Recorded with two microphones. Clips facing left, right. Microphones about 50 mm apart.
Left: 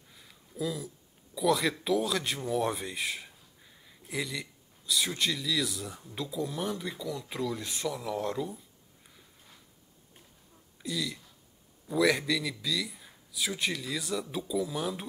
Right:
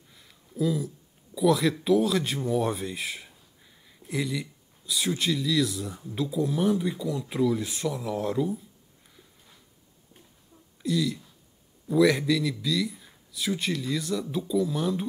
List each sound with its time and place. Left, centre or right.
0.1 s speech: centre
9.1 s a sound: centre
10.8 s a man's voice: centre